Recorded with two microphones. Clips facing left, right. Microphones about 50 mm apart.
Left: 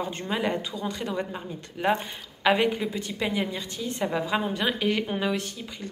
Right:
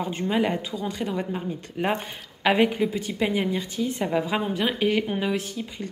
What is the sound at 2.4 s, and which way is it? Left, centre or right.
A woman's voice, right.